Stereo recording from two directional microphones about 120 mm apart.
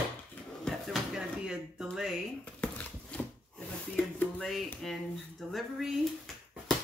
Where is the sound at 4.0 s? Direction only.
5° left (ahead or behind).